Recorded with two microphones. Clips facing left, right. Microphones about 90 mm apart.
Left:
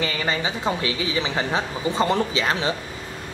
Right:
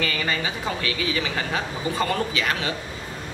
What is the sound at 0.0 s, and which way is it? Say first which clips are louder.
A woman's voice: left 1 dB; 25° left (ahead or behind).